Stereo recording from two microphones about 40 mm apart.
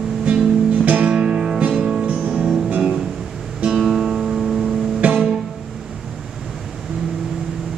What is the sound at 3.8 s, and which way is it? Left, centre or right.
Music, centre.